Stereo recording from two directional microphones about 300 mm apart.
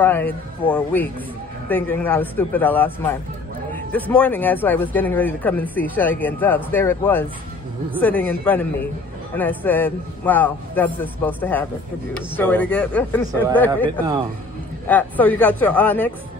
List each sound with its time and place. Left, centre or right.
0.0 s speech: centre
14.9 s speech: centre